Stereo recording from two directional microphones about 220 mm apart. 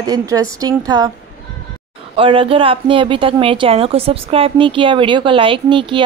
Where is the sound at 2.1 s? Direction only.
25° right (ahead or behind).